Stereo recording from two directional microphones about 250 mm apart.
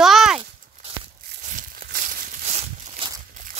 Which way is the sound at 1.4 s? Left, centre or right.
Right.